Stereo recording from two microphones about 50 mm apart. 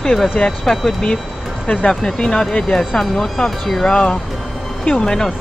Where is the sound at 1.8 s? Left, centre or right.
Centre.